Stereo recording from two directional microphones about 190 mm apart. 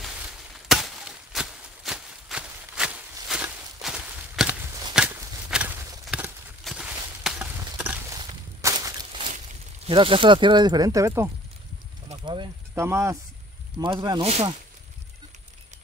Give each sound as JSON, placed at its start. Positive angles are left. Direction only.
{"t": 0.7, "sound": "chop", "side_deg": 0}
{"t": 3.3, "sound": "walk", "side_deg": -5}
{"t": 4.9, "sound": "a sound", "side_deg": -5}
{"t": 7.2, "sound": "horse", "side_deg": -5}
{"t": 8.2, "sound": "walk", "side_deg": -20}
{"t": 9.8, "sound": "speech", "side_deg": -25}
{"t": 12.1, "sound": "a sound", "side_deg": -25}
{"t": 12.7, "sound": "speech", "side_deg": -15}